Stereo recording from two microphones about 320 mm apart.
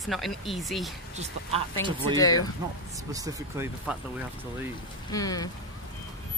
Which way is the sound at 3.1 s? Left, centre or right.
Centre.